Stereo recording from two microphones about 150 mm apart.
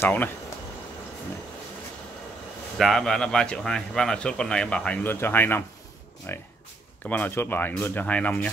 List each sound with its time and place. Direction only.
0.0 s speech: 10° left (ahead or behind)
2.8 s a man's voice: 5° left (ahead or behind)